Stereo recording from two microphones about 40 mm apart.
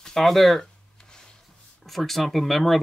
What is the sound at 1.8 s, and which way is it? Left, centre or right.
Speech, centre.